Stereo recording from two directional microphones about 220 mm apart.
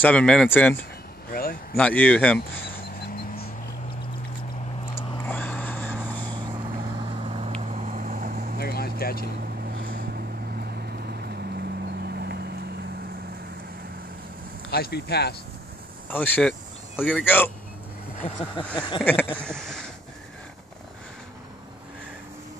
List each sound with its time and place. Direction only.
0.0 s speech: 5° left (ahead or behind)
1.3 s a sound: 40° left (ahead or behind)
1.8 s speech: 5° left (ahead or behind)
5.2 s vehicle: 10° left (ahead or behind)
6.2 s vehicle: 20° right (ahead or behind); by 8.5 s 40° right (ahead or behind)
8.5 s vehicle: 45° left (ahead or behind)
9.8 s vehicle: 45° right (ahead or behind)
14.7 s speech: 45° left (ahead or behind)
16.1 s speech: 10° left (ahead or behind)
16.9 s speech: 5° right (ahead or behind)
17.2 s speech: 10° left (ahead or behind)
18.8 s a sound: 20° left (ahead or behind)
19.3 s speech: 5° left (ahead or behind)